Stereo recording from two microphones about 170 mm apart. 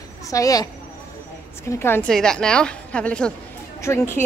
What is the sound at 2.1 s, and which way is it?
A woman's voice, 5° left (ahead or behind).